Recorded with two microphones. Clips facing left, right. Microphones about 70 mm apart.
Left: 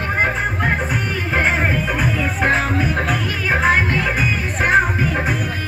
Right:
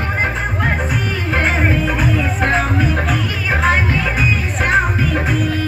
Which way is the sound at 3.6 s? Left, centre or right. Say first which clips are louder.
Right 1 dB; centre.